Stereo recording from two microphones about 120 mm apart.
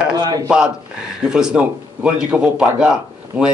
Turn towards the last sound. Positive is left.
turn(degrees=-5)  # may be behind; listen again after turning